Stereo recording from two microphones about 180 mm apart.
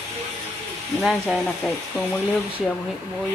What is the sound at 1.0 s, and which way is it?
Speech, centre (ahead or behind).